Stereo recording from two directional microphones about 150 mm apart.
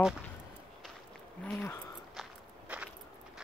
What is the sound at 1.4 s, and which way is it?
Speech, 10° left (ahead or behind).